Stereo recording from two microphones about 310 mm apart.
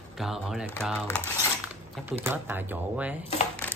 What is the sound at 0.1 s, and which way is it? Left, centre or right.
Speech, centre.